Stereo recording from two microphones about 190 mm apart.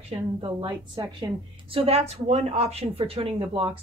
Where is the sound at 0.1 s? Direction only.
25° right (ahead or behind).